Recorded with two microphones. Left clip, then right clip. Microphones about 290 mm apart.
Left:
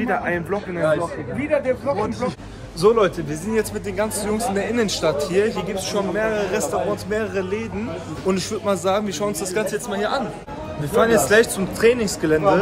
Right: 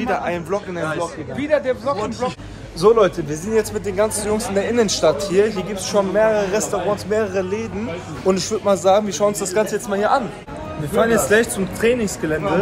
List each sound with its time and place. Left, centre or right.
0.0 s speech: centre
1.5 s speech: right
2.8 s a man's voice: centre
11.0 s a man's voice: centre